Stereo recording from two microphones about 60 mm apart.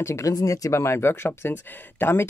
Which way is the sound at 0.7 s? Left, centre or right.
Left.